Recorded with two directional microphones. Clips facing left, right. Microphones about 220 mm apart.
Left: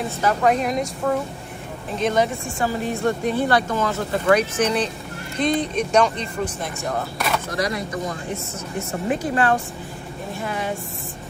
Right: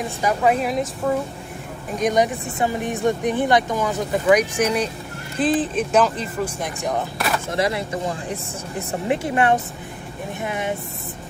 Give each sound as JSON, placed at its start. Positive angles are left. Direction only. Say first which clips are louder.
{"t": 0.2, "sound": "speech", "louder": "even", "side_deg": -10}
{"t": 2.0, "sound": "a woman's voice", "louder": "right 1 dB", "side_deg": -15}
{"t": 6.6, "sound": "a woman's voice", "louder": "right 2 dB", "side_deg": -15}
{"t": 7.2, "sound": "a sound", "louder": "even", "side_deg": 0}
{"t": 7.5, "sound": "speech", "louder": "right 2 dB", "side_deg": -25}
{"t": 9.2, "sound": "speech", "louder": "right 2 dB", "side_deg": -20}